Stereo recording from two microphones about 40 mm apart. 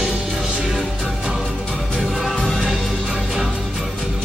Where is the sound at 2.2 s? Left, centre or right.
Centre.